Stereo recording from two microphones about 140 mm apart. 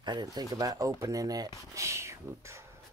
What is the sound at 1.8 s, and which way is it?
Whispering, 20° right (ahead or behind).